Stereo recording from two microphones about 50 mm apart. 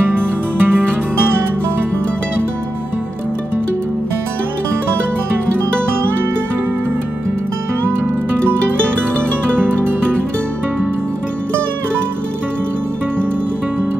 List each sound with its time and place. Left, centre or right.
0.0 s music: right
7.8 s music: right